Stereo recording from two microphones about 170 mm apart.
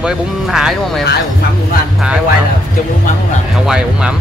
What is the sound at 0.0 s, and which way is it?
Speech, 5° right (ahead or behind).